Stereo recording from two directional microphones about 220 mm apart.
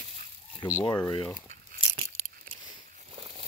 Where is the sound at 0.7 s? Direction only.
20° left (ahead or behind).